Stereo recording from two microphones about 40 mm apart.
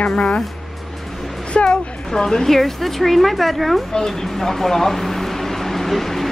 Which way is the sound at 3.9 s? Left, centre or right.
Centre.